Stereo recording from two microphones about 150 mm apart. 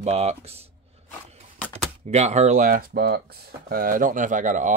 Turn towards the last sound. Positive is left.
turn(degrees=-60)  # may be behind; listen again after turning